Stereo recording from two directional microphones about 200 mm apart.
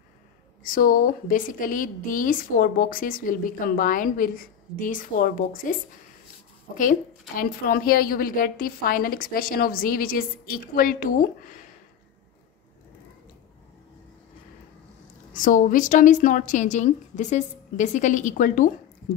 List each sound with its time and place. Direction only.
0.7 s a woman's voice: 45° left (ahead or behind)
6.8 s a woman's voice: 45° left (ahead or behind)
15.3 s a woman's voice: 40° left (ahead or behind)